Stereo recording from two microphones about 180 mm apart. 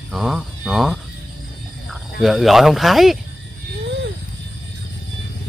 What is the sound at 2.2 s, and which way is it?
Speech, centre (ahead or behind).